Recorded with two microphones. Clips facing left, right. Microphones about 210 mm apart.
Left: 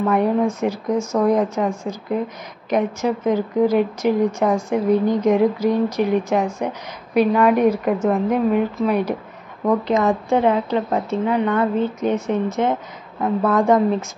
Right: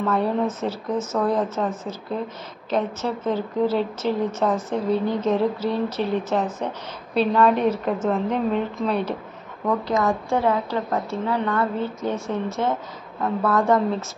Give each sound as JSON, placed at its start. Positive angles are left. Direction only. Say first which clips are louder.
{"t": 0.0, "sound": "a woman's voice", "louder": "left 4 dB", "side_deg": 15}